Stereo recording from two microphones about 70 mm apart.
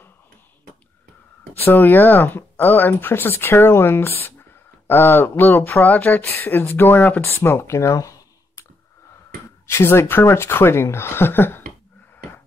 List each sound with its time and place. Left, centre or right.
1.5 s speech: left
7.7 s a sound: left
9.7 s speech: left